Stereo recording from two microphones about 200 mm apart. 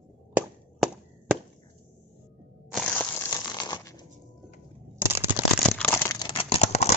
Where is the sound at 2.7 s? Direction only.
10° left (ahead or behind).